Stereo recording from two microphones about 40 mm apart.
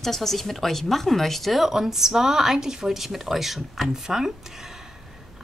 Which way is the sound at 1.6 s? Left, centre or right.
Centre.